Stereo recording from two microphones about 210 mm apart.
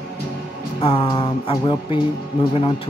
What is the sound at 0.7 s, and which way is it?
Speech, 25° left (ahead or behind).